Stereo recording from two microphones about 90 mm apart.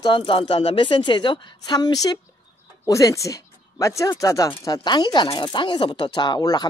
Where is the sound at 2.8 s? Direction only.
35° left (ahead or behind).